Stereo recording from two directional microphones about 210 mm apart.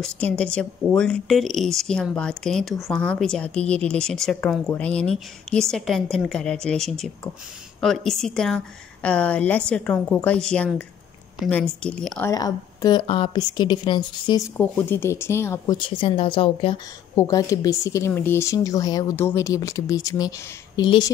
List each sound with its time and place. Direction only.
0.0 s speech: 5° left (ahead or behind)